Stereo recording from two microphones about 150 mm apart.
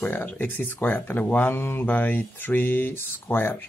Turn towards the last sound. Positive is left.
turn(degrees=15)  # may be behind; listen again after turning